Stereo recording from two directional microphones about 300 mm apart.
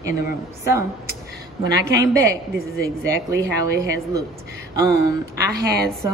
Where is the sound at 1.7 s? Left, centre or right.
Centre.